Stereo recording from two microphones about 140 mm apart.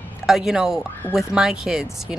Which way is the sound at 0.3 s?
5° right (ahead or behind).